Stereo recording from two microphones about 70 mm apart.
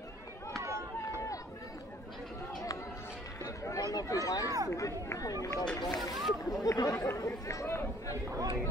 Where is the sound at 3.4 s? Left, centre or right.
Left.